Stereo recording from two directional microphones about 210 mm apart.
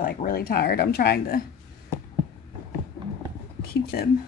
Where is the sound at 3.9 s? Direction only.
45° left (ahead or behind).